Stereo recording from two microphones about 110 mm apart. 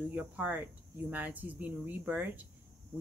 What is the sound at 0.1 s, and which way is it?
A woman's voice, 15° right (ahead or behind).